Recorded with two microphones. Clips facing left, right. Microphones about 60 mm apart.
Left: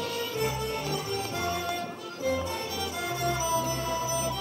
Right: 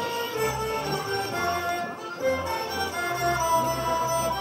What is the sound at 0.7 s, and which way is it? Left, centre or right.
Music, right.